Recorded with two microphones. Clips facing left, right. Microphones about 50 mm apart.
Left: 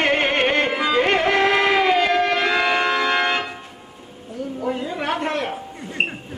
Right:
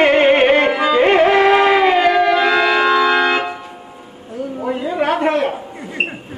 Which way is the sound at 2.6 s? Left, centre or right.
Right.